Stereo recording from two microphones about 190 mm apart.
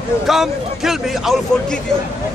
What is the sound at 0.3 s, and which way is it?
A man's voice, centre (ahead or behind).